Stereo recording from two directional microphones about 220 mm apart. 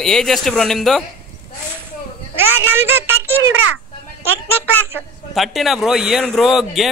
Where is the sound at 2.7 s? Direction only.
10° right (ahead or behind).